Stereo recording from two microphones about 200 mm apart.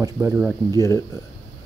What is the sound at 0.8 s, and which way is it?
Speech, 15° left (ahead or behind).